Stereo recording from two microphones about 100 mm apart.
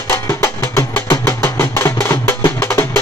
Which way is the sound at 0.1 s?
25° left (ahead or behind).